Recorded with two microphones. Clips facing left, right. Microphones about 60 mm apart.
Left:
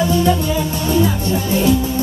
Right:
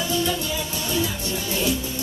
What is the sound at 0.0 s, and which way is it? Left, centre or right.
Music, left.